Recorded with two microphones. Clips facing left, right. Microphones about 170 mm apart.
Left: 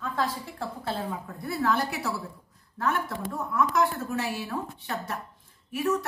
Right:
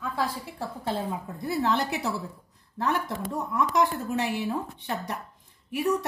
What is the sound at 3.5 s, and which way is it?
A woman's voice, 20° right (ahead or behind).